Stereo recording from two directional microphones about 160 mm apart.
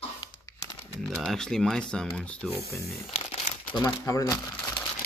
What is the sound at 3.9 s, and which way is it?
Speech, 20° left (ahead or behind).